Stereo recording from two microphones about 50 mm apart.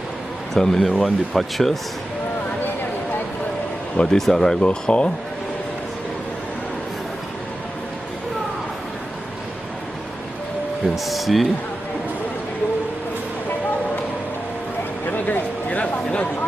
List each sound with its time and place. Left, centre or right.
0.6 s speech: centre
3.9 s speech: centre
11.1 s speech: centre
15.0 s a sound: left
15.8 s speech: left